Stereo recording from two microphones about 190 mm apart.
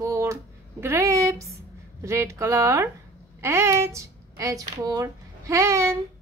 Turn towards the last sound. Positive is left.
turn(degrees=-15)  # may be behind; listen again after turning